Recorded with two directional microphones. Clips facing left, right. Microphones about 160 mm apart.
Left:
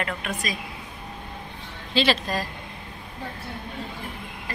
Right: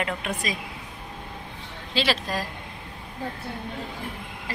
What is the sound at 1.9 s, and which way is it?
Speech, 5° right (ahead or behind).